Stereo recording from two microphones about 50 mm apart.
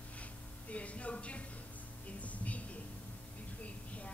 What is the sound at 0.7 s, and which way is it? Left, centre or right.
Music, left.